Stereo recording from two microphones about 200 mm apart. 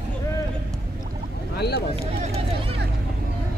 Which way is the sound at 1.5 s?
55° left (ahead or behind).